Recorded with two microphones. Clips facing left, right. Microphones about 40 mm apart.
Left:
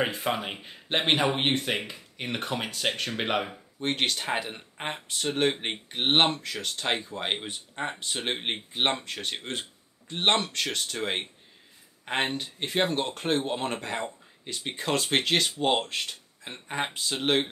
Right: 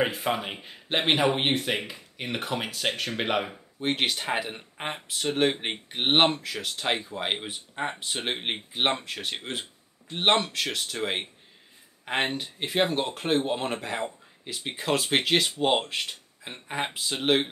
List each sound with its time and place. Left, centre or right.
0.0 s speech: centre